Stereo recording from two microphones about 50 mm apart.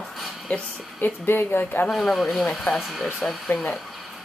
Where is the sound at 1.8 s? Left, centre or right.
Centre.